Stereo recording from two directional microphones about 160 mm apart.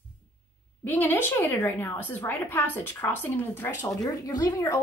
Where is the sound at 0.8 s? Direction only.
10° left (ahead or behind).